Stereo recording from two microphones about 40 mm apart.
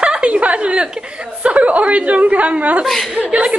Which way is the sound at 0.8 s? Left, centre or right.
Right.